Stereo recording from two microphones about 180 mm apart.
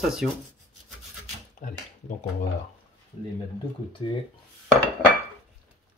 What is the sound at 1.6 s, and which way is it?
Speech, 45° left (ahead or behind).